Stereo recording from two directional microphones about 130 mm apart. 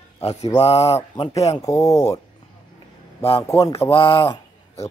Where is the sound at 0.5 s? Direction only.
50° left (ahead or behind).